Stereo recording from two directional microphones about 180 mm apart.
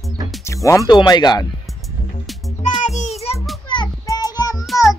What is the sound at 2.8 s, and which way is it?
Music, 35° left (ahead or behind).